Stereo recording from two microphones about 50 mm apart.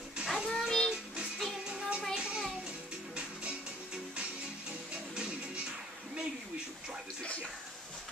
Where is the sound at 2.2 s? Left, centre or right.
Centre.